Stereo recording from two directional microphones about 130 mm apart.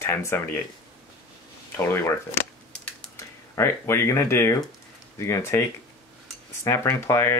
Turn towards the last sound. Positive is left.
turn(degrees=20)  # may be behind; listen again after turning